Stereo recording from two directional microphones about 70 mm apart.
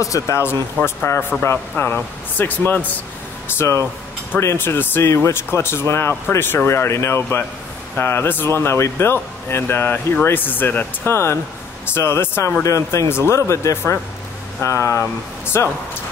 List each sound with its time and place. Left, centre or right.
0.0 s speech: left
0.8 s speech: left
1.9 s speech: left
3.5 s speech: left
12.6 s speech: left